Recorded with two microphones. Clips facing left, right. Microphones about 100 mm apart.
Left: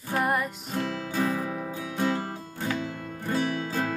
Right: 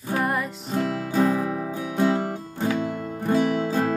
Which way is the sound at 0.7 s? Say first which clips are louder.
Right 6 dB; 45° right (ahead or behind).